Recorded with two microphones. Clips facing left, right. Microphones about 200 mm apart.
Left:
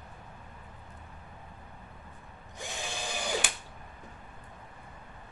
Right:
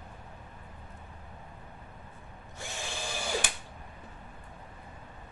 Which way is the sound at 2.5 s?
15° left (ahead or behind).